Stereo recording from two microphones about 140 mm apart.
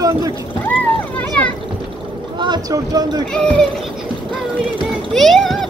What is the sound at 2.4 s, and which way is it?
Speech, 30° right (ahead or behind).